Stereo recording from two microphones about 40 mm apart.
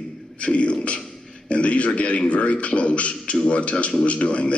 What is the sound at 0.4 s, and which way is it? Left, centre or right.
A man's voice, left.